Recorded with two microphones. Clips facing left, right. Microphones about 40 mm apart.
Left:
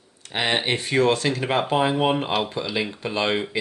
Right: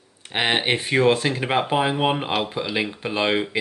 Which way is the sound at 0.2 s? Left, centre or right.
Right.